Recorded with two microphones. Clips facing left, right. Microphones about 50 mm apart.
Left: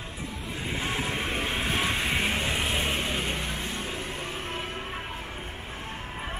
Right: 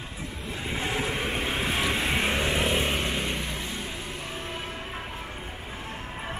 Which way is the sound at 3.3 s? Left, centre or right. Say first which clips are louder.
Even; left.